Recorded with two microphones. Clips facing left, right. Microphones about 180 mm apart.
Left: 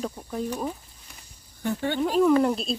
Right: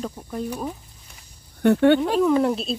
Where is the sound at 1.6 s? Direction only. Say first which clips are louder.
Right 12 dB; 70° right (ahead or behind).